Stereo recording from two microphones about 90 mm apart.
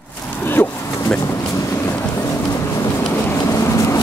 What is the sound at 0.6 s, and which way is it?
Vehicle, 30° left (ahead or behind).